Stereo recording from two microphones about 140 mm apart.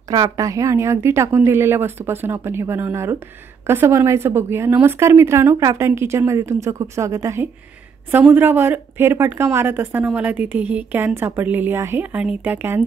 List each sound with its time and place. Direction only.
0.1 s a woman's voice: 25° right (ahead or behind)